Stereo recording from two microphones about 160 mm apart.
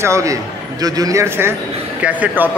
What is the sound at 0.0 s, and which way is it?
A man's voice, 20° right (ahead or behind).